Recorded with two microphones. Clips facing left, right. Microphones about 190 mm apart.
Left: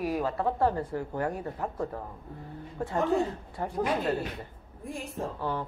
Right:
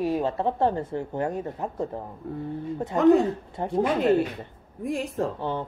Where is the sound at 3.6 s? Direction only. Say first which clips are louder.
Right 5 dB; 25° right (ahead or behind).